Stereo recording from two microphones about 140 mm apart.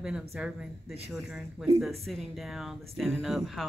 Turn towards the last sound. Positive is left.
turn(degrees=0)  # may be behind; listen again after turning